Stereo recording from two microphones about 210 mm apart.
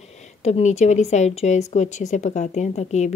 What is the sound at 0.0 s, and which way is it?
A woman's voice, 35° left (ahead or behind).